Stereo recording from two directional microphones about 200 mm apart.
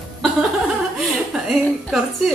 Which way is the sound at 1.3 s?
Centre (ahead or behind).